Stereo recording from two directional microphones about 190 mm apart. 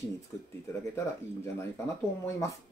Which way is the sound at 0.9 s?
15° left (ahead or behind).